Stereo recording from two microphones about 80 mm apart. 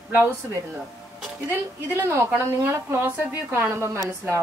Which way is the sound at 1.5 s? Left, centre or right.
Right.